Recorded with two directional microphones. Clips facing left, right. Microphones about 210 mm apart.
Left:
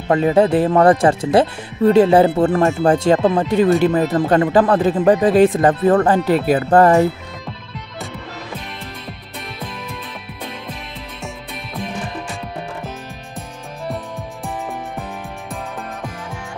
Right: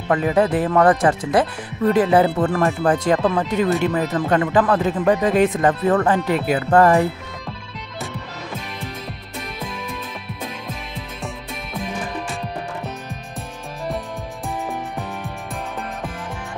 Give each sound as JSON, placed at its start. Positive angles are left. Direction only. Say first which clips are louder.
{"t": 0.1, "sound": "speech", "louder": "left 4 dB", "side_deg": 30}